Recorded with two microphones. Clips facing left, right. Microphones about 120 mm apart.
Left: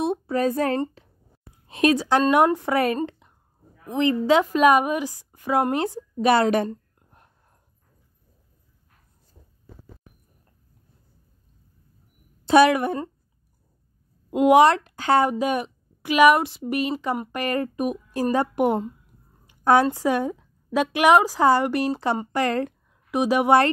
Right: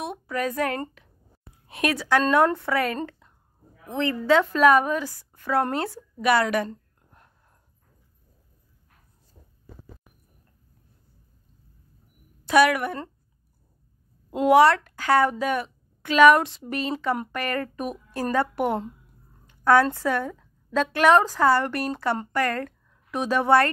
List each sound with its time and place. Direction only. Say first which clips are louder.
0.0 s a woman's voice: left 6 dB; 30° left (ahead or behind)
3.1 s a sound: left 2 dB; 15° left (ahead or behind)
3.9 s a woman's voice: left 2 dB; 15° left (ahead or behind)
6.1 s speech: left 3 dB; 25° left (ahead or behind)
12.4 s speech: left 3 dB; 25° left (ahead or behind)
14.3 s a woman's voice: left 2 dB; 15° left (ahead or behind)